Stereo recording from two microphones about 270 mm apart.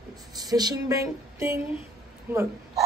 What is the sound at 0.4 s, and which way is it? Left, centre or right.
Speech, centre.